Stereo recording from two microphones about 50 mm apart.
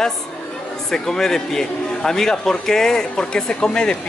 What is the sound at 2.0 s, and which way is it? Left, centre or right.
Speech, centre.